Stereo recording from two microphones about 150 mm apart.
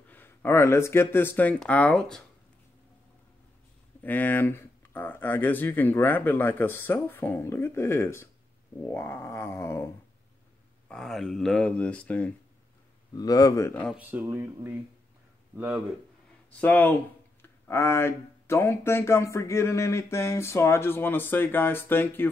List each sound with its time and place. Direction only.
0.1 s speech: 15° left (ahead or behind)
4.0 s speech: 10° left (ahead or behind)
10.9 s speech: 5° left (ahead or behind)
13.1 s speech: 25° left (ahead or behind)
13.9 s a man's voice: 15° right (ahead or behind)
16.5 s speech: 10° left (ahead or behind)